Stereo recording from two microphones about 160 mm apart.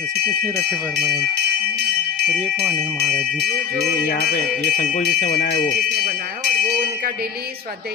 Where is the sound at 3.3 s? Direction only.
80° right.